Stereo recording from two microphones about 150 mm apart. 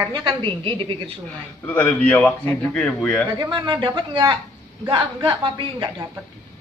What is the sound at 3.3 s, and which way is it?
A woman's voice, 30° right (ahead or behind).